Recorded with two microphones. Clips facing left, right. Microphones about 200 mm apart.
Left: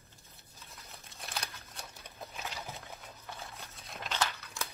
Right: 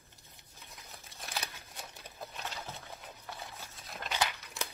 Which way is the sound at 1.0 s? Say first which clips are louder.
Right 1 dB; centre (ahead or behind).